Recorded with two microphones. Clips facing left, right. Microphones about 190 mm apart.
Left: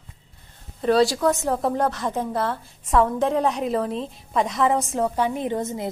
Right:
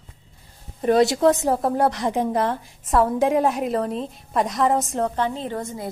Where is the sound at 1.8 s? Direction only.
15° right (ahead or behind).